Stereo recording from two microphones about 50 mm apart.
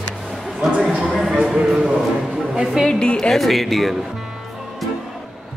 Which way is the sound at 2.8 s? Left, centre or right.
Centre.